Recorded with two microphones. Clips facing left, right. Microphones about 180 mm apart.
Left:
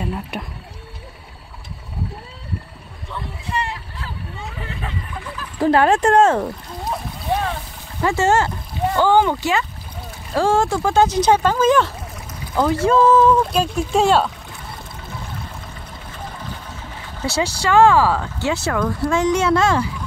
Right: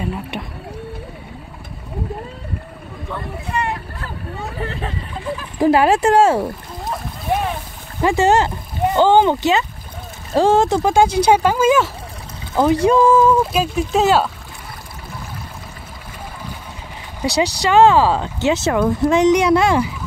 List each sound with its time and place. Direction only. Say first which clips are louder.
0.0 s a sound: right 1 dB; centre (ahead or behind)
3.1 s vehicle: right 2 dB; 55° right (ahead or behind)
5.1 s a sound: right 5 dB; 20° right (ahead or behind); by 7.0 s 5° right (ahead or behind)
7.2 s boat: right 2 dB; 15° right (ahead or behind)
8.0 s speech: right 3 dB; 15° right (ahead or behind)
12.5 s speech: right 2 dB; 20° right (ahead or behind); by 14.3 s 5° right (ahead or behind)
17.2 s speech: right 3 dB; 15° right (ahead or behind)